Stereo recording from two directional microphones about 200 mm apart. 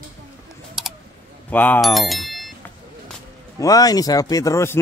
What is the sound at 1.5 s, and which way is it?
Speech, 10° left (ahead or behind).